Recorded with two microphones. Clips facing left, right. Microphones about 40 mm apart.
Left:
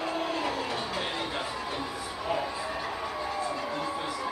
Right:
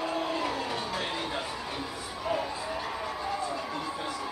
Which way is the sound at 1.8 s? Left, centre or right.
Centre.